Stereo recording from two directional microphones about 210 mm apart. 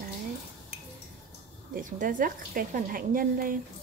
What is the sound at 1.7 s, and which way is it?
A woman's voice, 40° right (ahead or behind).